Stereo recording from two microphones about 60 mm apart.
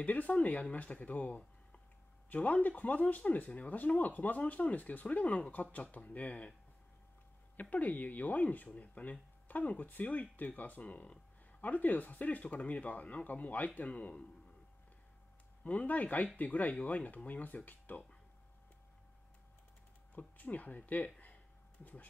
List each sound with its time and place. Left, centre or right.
0.0 s speech: left
7.5 s speech: left
15.6 s speech: left
20.2 s speech: left